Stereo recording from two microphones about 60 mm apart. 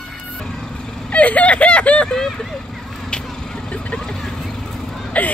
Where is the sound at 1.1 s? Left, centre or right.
Left.